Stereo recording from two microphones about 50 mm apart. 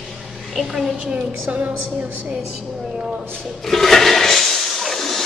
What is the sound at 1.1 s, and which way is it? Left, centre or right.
A woman's voice, right.